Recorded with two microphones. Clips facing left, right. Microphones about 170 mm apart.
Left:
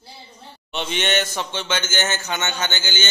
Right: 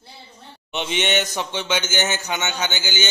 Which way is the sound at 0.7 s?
15° right (ahead or behind).